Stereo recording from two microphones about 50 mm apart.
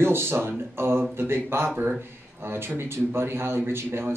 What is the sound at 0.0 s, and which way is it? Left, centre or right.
A man's voice, right.